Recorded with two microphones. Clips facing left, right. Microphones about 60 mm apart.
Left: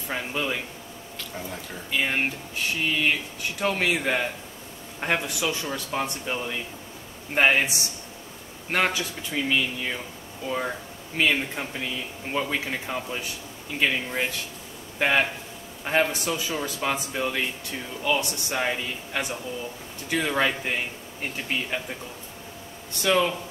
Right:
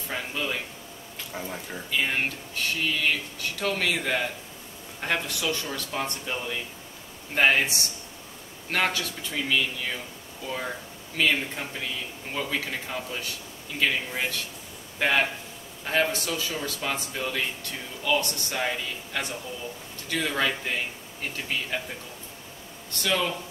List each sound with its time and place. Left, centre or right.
0.1 s speech: centre
1.3 s speech: centre
1.9 s speech: centre
8.7 s speech: centre
23.0 s speech: centre